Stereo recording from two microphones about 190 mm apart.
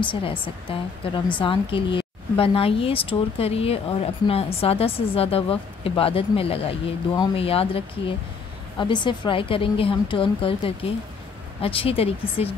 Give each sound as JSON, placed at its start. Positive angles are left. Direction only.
{"t": 0.0, "sound": "speech", "side_deg": 25}